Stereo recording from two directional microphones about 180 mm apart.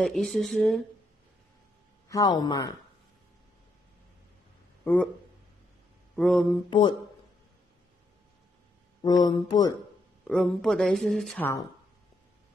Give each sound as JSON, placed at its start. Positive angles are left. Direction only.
{"t": 0.0, "sound": "speech", "side_deg": 0}
{"t": 2.0, "sound": "speech", "side_deg": 20}
{"t": 4.8, "sound": "speech", "side_deg": 5}
{"t": 6.1, "sound": "speech", "side_deg": 0}
{"t": 6.7, "sound": "speech", "side_deg": 25}
{"t": 9.0, "sound": "speech", "side_deg": 25}
{"t": 10.2, "sound": "speech", "side_deg": 5}